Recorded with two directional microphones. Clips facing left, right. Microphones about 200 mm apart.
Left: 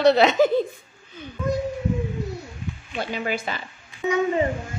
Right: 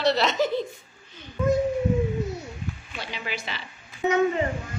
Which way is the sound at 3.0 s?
50° left (ahead or behind).